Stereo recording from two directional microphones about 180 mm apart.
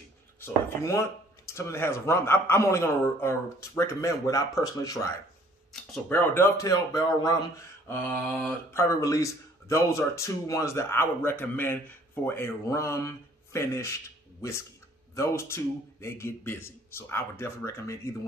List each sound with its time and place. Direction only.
0.4 s speech: 15° left (ahead or behind)
15.1 s speech: 15° left (ahead or behind)